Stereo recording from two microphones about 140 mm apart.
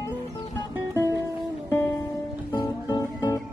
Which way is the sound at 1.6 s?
15° left (ahead or behind).